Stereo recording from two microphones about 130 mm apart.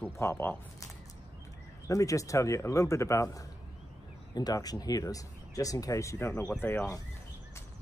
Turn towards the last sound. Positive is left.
turn(degrees=20)  # may be behind; listen again after turning